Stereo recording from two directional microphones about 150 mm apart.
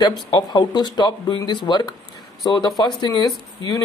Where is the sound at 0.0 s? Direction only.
30° left (ahead or behind).